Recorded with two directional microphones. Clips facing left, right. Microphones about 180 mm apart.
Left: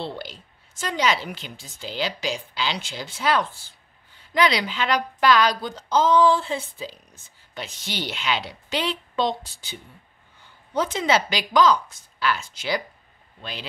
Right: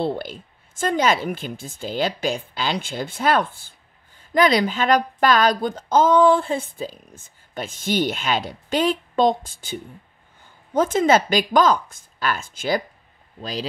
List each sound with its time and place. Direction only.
0.0 s a woman's voice: 50° right (ahead or behind)
13.4 s speech: 40° right (ahead or behind)